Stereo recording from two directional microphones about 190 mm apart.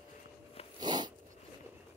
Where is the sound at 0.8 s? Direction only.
20° right (ahead or behind).